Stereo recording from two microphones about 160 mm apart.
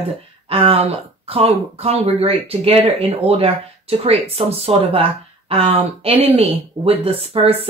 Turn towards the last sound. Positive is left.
turn(degrees=-35)  # may be behind; listen again after turning